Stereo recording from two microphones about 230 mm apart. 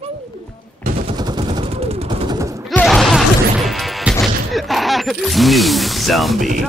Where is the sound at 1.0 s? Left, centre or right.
Centre.